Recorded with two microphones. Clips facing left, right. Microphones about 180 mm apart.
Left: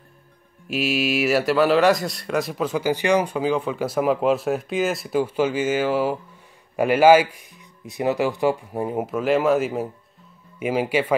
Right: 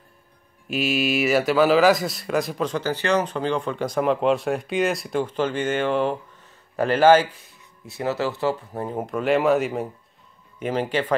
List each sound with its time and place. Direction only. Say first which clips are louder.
0.7 s speech: even; centre (ahead or behind)